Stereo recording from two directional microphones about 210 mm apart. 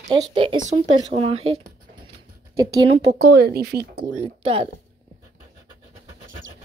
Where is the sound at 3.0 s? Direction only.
45° right (ahead or behind).